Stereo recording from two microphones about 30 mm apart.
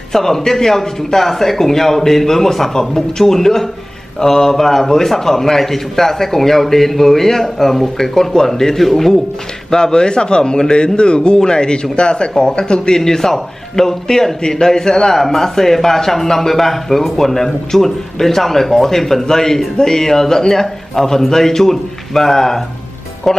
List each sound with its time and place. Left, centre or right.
0.1 s a man's voice: centre; by 13.0 s left
13.0 s a man's voice: centre